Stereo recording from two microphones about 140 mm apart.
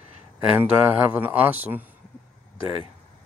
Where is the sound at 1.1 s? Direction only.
10° right (ahead or behind).